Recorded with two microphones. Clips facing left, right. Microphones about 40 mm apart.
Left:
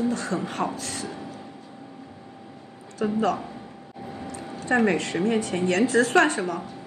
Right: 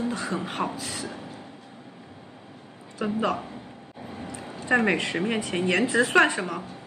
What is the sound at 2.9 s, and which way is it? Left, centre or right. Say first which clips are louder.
Speech: left 2 dB; right.